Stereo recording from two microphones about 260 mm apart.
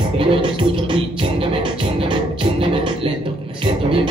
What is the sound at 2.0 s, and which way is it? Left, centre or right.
Music, centre.